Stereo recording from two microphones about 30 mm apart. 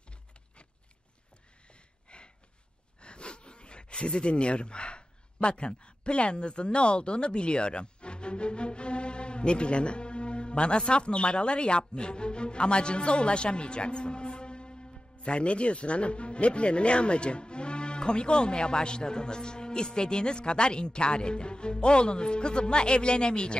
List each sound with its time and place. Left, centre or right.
2.0 s gasp: left
3.0 s speech: left